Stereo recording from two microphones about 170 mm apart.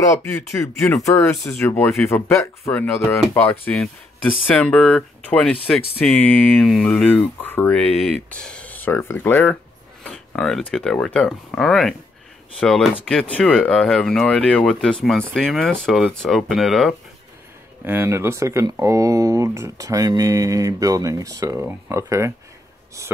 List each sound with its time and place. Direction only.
0.1 s speech: 15° left (ahead or behind)
1.3 s speech: centre (ahead or behind)
1.6 s speech: 15° left (ahead or behind); by 16.9 s centre (ahead or behind)
17.8 s speech: 15° right (ahead or behind)